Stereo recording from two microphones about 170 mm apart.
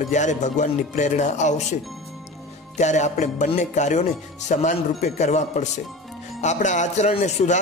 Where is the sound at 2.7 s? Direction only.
45° left (ahead or behind).